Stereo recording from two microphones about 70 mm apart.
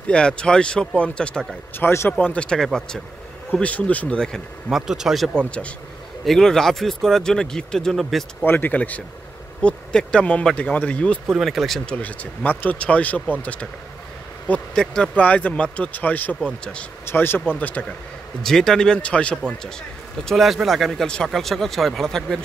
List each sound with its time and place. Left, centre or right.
0.1 s speech: centre
1.8 s speech: left
2.1 s speech: centre
4.6 s speech: centre
6.2 s speech: centre
8.5 s speech: left
11.2 s speech: centre
11.8 s speech: centre
17.0 s speech: left
17.6 s speech: left
18.4 s speech: centre
20.2 s speech: centre